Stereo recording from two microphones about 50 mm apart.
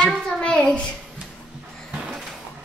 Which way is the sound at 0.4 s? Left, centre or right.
Centre.